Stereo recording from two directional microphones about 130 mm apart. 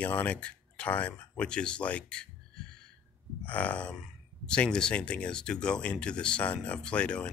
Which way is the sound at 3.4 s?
10° left (ahead or behind).